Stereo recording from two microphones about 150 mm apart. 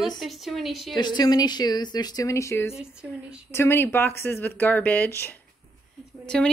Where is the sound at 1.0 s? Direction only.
30° left (ahead or behind).